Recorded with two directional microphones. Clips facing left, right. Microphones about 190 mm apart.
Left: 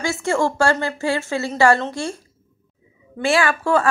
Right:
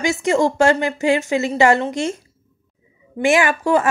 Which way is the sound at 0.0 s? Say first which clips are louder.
Right 3 dB; 20° right (ahead or behind).